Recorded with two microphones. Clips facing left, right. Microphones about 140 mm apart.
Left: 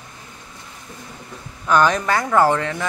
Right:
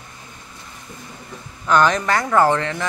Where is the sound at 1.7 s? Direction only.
10° left (ahead or behind).